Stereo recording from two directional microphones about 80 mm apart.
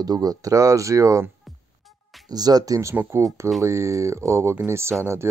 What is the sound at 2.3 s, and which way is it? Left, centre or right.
Speech, right.